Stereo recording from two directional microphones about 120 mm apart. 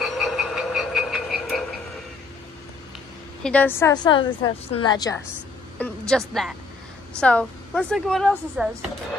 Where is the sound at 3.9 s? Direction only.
40° left (ahead or behind).